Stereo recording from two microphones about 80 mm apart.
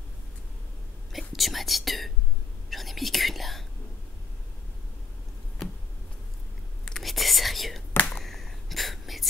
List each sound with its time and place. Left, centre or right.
1.3 s speech: centre
2.7 s whispering: centre
7.0 s whispering: centre
7.9 s a sound: centre
8.2 s whispering: centre